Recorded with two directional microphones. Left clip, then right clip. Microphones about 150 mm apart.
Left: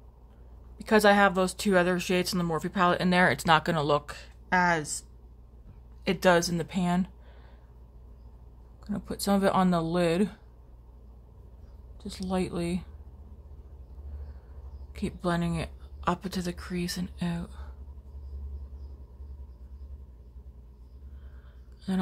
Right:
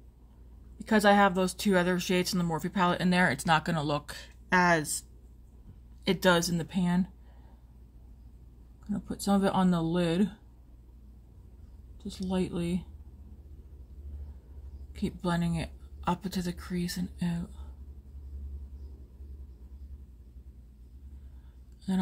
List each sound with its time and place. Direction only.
0.7 s speech: 15° left (ahead or behind)
4.0 s speech: centre (ahead or behind)
6.0 s speech: 10° left (ahead or behind)
8.8 s speech: 10° left (ahead or behind)
12.0 s speech: 10° left (ahead or behind)
15.0 s speech: 10° left (ahead or behind)